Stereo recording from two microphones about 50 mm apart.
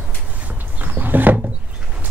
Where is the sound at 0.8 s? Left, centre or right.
Right.